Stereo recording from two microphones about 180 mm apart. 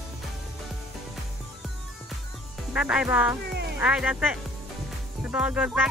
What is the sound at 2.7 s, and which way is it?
Speech, 5° right (ahead or behind).